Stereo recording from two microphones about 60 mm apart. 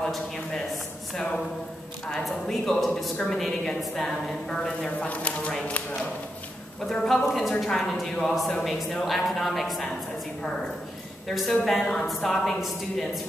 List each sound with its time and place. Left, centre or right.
0.0 s a sound: centre
1.1 s a woman's voice: centre
5.0 s speech: left
6.9 s a woman's voice: centre
11.2 s a woman's voice: centre